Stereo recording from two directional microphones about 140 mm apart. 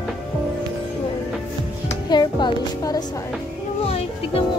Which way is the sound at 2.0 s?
30° left (ahead or behind).